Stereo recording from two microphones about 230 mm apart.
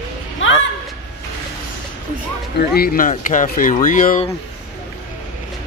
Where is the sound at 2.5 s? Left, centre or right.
Left.